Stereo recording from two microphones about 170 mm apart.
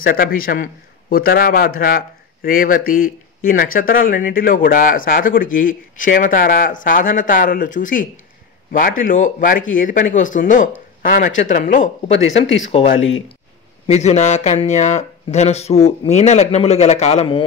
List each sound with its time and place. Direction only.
0.0 s speech: 60° left (ahead or behind)
12.1 s speech: 90° left
13.8 s speech: 40° left (ahead or behind)